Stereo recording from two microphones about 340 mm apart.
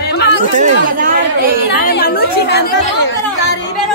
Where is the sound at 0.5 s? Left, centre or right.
Right.